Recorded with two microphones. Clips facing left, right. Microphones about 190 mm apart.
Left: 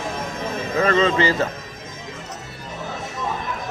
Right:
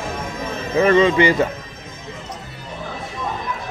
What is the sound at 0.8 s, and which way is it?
Speech, 15° right (ahead or behind).